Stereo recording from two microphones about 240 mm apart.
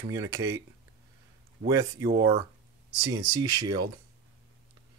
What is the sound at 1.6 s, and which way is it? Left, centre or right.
Speech, centre.